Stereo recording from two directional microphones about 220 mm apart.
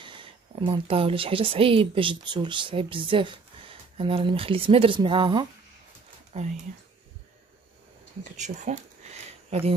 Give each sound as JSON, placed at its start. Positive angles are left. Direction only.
{"t": 0.0, "sound": "speech", "side_deg": -25}
{"t": 8.2, "sound": "speech", "side_deg": -35}